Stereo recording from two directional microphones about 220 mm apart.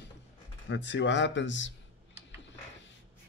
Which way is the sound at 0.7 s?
55° left (ahead or behind).